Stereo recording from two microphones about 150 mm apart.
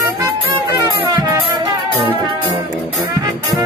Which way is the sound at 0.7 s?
20° right (ahead or behind).